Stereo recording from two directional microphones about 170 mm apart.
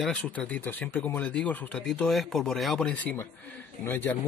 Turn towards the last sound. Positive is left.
turn(degrees=10)  # may be behind; listen again after turning